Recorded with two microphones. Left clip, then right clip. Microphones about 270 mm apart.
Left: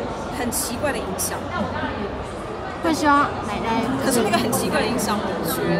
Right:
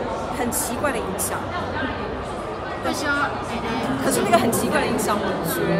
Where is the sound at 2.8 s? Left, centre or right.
Centre.